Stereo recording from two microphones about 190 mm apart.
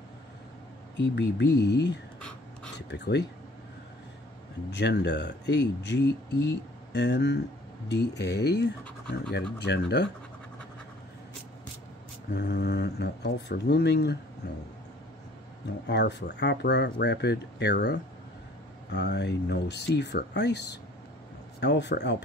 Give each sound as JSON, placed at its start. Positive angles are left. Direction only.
{"t": 1.0, "sound": "speech", "side_deg": 65}
{"t": 4.6, "sound": "speech", "side_deg": 65}
{"t": 8.8, "sound": "speech", "side_deg": 5}
{"t": 9.3, "sound": "speech", "side_deg": 60}
{"t": 12.3, "sound": "speech", "side_deg": 60}
{"t": 15.9, "sound": "speech", "side_deg": 65}